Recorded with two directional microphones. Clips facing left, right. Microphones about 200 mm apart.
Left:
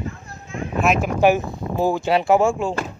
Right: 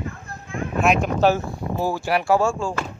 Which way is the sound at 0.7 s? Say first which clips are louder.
Even; centre (ahead or behind).